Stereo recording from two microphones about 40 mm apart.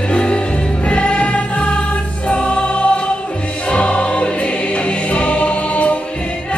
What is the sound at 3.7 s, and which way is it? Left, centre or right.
Music, left.